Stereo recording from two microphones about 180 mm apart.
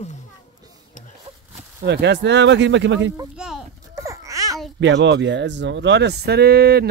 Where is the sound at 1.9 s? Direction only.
70° right (ahead or behind); by 3.1 s 90° right.